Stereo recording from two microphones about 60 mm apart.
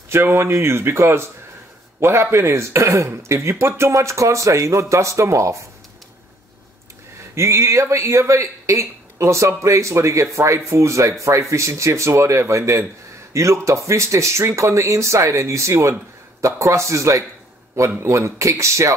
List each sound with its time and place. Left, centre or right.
0.1 s a man's voice: right
7.3 s speech: right